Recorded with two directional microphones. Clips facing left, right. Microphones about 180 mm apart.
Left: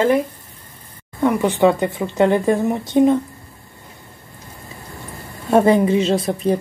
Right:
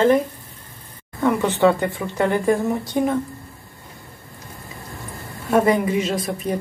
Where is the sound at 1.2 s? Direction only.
15° left (ahead or behind).